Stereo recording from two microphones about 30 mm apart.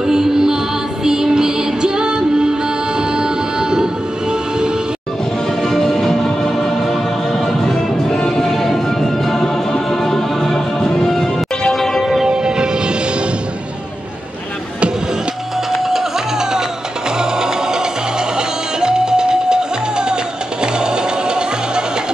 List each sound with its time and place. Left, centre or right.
0.0 s music: centre
5.6 s music: centre
12.0 s music: centre
12.3 s music: right
15.7 s music: centre; by 21.8 s right